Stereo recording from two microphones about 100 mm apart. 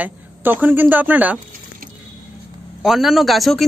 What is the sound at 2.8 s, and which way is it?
Speech, 5° right (ahead or behind).